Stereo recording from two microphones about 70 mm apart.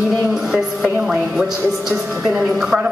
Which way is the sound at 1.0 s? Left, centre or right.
Centre.